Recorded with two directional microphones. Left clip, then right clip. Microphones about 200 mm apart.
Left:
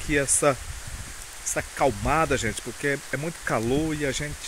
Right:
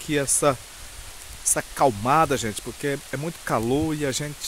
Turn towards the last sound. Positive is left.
turn(degrees=-25)  # may be behind; listen again after turning